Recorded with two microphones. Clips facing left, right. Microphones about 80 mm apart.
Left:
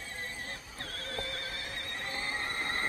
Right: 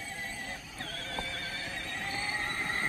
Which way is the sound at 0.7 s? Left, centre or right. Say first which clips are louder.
Right 1 dB; left.